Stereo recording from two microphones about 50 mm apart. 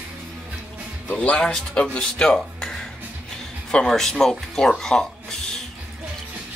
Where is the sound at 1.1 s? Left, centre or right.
Left.